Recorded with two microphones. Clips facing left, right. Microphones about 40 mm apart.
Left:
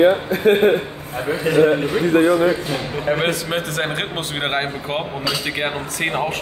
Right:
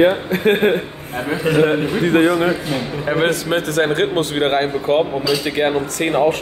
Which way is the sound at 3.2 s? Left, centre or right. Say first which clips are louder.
Right 3 dB; centre.